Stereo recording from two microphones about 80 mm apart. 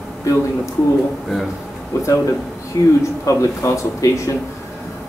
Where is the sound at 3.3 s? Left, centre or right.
Left.